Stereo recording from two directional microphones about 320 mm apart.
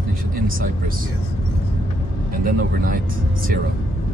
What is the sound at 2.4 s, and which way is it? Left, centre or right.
Speech, right.